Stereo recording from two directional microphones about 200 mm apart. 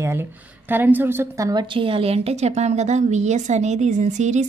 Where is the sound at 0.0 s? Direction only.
10° right (ahead or behind).